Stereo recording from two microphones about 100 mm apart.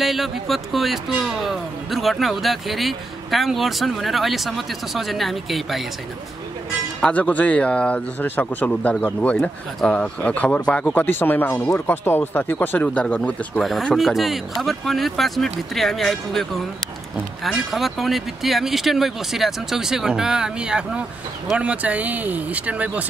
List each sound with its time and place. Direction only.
0.0 s speech: centre (ahead or behind)
7.0 s speech: 15° left (ahead or behind)
13.7 s speech: centre (ahead or behind)